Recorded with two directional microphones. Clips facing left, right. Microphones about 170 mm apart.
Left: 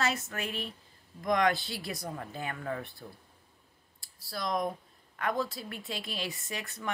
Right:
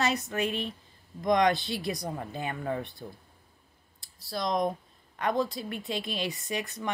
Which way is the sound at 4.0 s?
20° right (ahead or behind).